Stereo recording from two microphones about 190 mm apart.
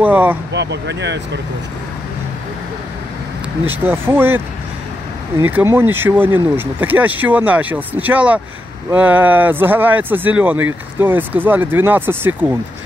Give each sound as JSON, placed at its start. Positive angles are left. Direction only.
{"t": 0.0, "sound": "speech", "side_deg": -10}
{"t": 0.5, "sound": "speech", "side_deg": -65}
{"t": 3.6, "sound": "speech", "side_deg": -10}
{"t": 5.4, "sound": "speech", "side_deg": -10}